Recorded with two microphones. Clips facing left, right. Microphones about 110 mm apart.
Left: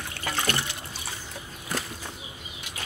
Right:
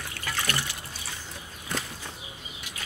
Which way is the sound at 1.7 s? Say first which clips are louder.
Left 1 dB; 5° left (ahead or behind).